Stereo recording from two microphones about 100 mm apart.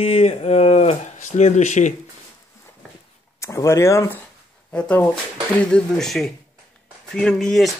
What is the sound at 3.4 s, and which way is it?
Speech, 30° left (ahead or behind).